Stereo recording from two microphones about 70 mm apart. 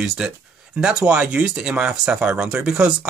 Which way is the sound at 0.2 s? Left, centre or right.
Centre.